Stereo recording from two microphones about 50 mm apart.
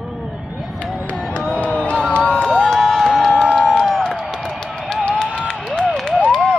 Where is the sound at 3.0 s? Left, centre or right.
Centre.